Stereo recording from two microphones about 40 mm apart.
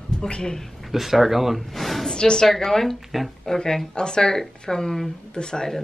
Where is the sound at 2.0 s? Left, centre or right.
Centre.